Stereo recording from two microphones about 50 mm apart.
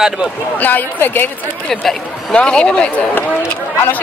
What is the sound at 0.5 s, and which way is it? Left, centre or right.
Speech, left.